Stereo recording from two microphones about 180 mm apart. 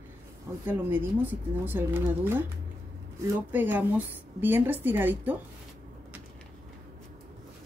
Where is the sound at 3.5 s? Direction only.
10° right (ahead or behind).